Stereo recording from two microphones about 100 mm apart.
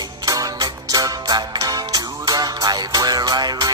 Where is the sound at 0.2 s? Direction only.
40° right (ahead or behind).